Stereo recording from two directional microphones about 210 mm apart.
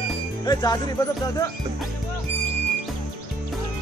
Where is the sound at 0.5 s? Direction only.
20° left (ahead or behind).